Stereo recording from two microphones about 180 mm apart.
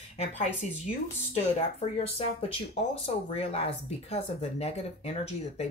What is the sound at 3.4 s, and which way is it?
Speech, 35° left (ahead or behind).